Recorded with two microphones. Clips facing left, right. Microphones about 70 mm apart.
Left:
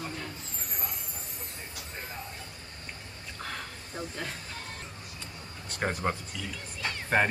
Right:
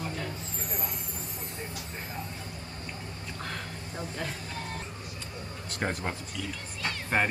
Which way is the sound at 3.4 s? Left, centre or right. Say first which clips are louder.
Left 1 dB; centre.